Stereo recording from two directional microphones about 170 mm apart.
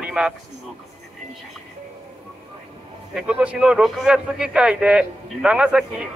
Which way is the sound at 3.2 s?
5° right (ahead or behind).